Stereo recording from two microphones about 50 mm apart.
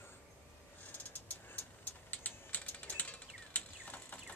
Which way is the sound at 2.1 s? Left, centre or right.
Left.